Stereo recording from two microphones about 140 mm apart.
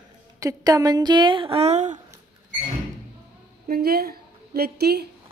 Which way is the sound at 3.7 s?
90° right.